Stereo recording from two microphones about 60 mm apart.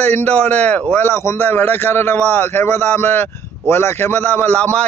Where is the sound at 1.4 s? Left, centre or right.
Left.